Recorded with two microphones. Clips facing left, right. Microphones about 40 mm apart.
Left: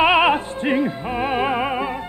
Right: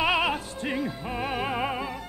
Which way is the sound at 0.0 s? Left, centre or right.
Left.